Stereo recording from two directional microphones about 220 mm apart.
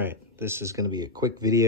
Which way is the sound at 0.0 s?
10° right (ahead or behind).